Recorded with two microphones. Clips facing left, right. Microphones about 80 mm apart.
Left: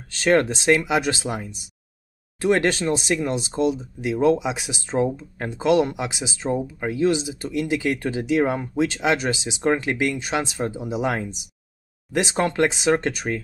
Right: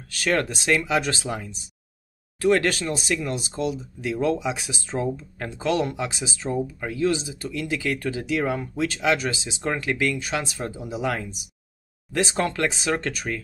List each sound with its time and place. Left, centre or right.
0.1 s speech: left